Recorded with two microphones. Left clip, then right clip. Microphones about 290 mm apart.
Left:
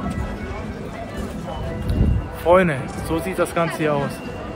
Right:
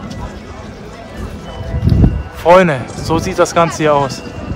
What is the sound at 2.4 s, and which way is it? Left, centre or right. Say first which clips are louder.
Speech: right 7 dB; right.